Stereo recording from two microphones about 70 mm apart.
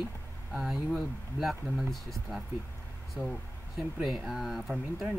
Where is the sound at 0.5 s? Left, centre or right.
Centre.